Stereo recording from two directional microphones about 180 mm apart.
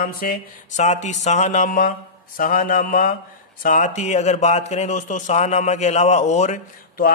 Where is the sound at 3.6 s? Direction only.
45° left (ahead or behind).